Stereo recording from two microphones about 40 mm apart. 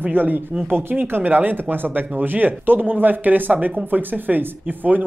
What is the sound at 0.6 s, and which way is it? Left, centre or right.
Speech, right.